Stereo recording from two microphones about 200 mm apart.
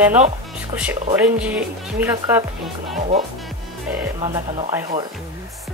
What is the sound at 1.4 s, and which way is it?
Speech, 10° right (ahead or behind).